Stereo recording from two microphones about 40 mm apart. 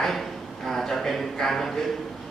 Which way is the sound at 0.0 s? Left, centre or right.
Centre.